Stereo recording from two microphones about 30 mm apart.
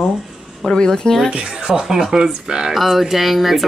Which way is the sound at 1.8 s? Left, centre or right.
Centre.